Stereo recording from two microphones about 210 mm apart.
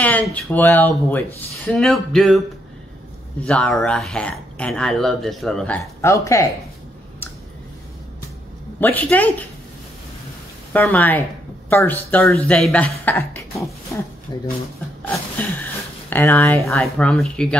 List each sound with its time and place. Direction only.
0.0 s speech: 5° left (ahead or behind)
3.4 s speech: 5° left (ahead or behind)
8.7 s speech: 10° left (ahead or behind)
10.7 s speech: 10° left (ahead or behind)
16.1 s speech: 10° left (ahead or behind)